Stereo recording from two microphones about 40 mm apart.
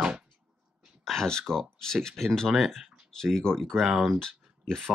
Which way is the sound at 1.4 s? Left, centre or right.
Centre.